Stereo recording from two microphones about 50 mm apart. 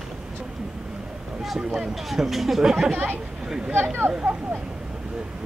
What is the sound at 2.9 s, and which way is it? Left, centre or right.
Speech, right.